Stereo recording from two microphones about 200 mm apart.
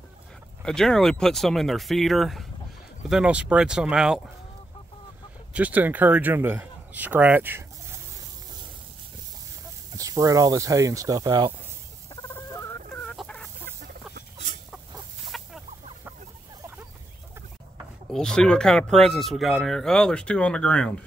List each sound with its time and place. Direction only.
0.7 s speech: centre (ahead or behind)
5.5 s speech: 10° right (ahead or behind)
9.9 s speech: 15° right (ahead or behind)
12.2 s fowl: 10° left (ahead or behind)
15.2 s chicken: centre (ahead or behind)
18.1 s speech: 5° left (ahead or behind)